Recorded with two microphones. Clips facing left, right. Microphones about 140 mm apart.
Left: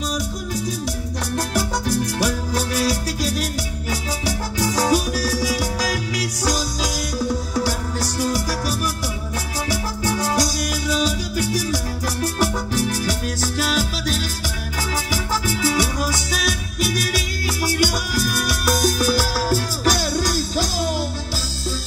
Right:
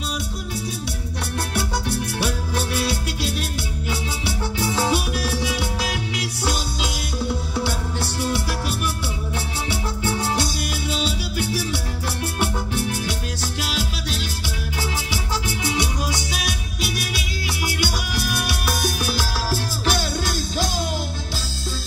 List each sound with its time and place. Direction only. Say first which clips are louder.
1.5 s music: left 3 dB; 40° left (ahead or behind)